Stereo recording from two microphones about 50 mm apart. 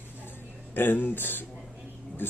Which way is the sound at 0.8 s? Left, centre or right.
Left.